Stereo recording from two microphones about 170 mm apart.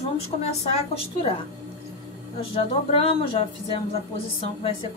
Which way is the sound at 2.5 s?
30° left (ahead or behind).